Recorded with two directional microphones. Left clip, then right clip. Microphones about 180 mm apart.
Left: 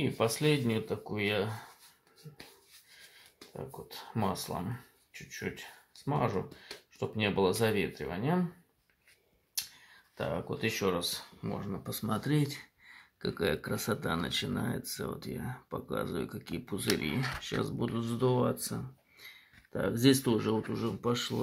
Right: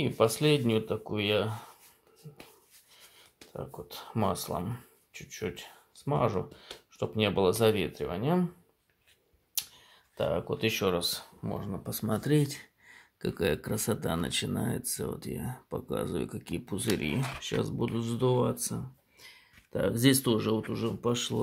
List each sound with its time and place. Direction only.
0.0 s speech: 35° right (ahead or behind)
3.5 s speech: 35° right (ahead or behind)
9.6 s speech: 35° right (ahead or behind)